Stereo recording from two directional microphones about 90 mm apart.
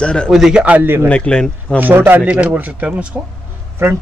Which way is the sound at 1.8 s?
25° right (ahead or behind).